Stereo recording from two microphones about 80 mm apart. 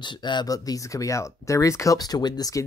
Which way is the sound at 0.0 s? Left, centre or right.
Left.